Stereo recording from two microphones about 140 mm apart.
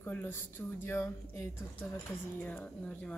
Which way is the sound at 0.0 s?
15° left (ahead or behind).